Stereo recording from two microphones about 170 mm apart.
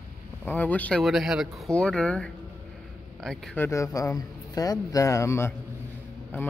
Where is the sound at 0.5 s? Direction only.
10° left (ahead or behind).